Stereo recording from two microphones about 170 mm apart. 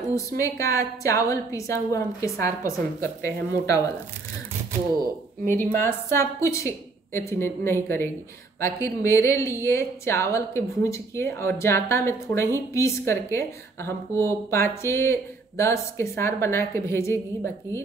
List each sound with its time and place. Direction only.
0.4 s a woman's voice: 20° left (ahead or behind)
5.6 s a woman's voice: 15° left (ahead or behind)